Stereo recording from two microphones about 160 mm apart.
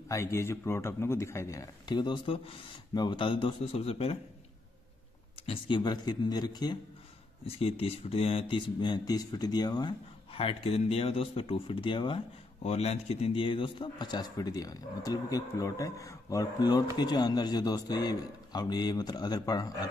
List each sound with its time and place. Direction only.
0.1 s a man's voice: 15° left (ahead or behind); by 4.2 s 40° left (ahead or behind)
5.5 s a man's voice: 30° left (ahead or behind)
7.4 s a man's voice: 40° left (ahead or behind)